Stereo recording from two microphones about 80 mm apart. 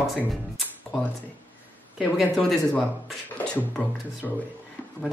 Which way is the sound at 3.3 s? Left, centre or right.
Centre.